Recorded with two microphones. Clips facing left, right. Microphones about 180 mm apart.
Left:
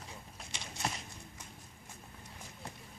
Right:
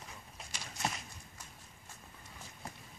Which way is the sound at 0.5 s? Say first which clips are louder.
Left 2 dB; 25° left (ahead or behind).